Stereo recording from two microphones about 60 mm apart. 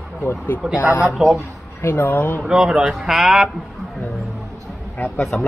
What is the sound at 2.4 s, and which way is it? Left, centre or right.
Speech, centre.